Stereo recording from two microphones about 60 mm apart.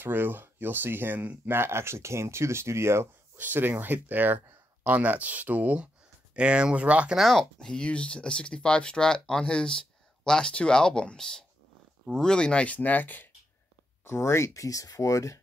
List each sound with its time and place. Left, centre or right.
0.0 s speech: right
3.3 s speech: right
7.2 s speech: centre; by 13.3 s left
14.0 s speech: left